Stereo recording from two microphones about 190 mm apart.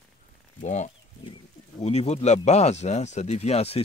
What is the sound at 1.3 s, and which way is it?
Speech, 35° left (ahead or behind).